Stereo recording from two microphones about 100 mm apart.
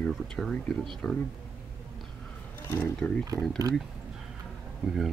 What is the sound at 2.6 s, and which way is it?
Speech, 25° left (ahead or behind).